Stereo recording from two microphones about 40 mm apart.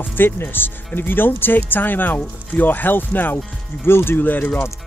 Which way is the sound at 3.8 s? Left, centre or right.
Left.